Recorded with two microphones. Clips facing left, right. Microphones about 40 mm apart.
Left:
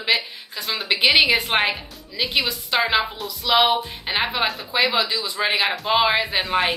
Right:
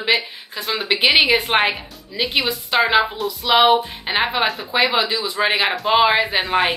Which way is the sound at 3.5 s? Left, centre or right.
Centre.